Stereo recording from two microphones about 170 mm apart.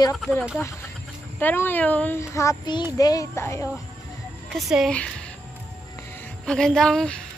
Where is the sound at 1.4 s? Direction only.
10° left (ahead or behind).